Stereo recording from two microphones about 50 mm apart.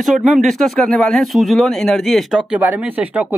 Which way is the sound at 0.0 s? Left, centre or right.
Centre.